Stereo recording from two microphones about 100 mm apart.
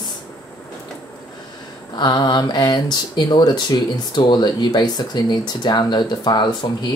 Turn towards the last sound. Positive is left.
turn(degrees=50)  # may be behind; listen again after turning